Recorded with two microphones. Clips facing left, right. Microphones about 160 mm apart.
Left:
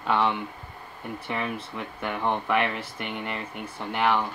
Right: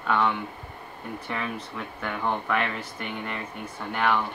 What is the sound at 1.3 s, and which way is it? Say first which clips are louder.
Speech: left 2 dB; 15° left (ahead or behind).